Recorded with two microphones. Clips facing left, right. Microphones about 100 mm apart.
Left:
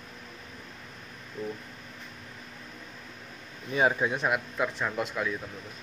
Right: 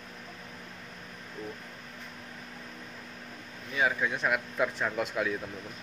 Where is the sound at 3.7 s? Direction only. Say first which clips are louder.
Left 4 dB; 25° left (ahead or behind).